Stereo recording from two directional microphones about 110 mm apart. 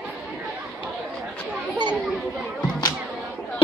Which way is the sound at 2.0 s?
Centre (ahead or behind).